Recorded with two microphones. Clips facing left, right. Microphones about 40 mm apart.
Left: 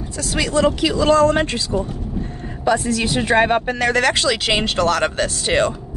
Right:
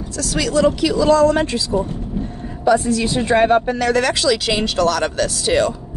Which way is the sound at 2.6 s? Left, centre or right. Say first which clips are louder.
Right 3 dB; left.